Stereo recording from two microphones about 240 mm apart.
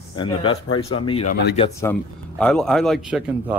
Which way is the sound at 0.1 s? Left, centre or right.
Centre.